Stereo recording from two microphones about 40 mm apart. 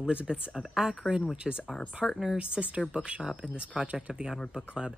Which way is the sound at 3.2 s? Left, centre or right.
Centre.